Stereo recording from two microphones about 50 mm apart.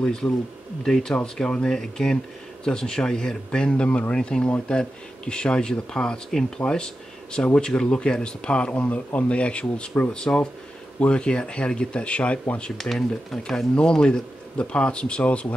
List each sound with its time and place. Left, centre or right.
0.0 s speech: centre
12.7 s speech: centre
13.7 s speech: centre